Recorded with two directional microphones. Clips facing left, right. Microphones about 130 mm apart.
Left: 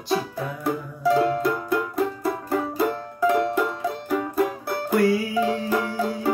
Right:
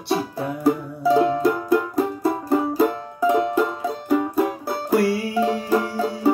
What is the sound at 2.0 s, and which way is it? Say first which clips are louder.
Music: right 3 dB; 30° right (ahead or behind).